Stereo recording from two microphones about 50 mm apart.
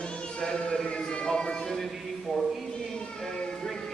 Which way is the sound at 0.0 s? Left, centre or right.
Left.